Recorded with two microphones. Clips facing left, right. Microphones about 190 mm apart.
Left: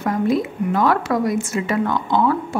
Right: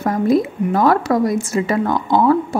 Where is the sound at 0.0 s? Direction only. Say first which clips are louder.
Right 3 dB; 40° right (ahead or behind).